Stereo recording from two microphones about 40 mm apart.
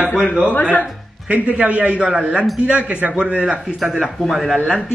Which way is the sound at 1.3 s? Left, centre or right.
Right.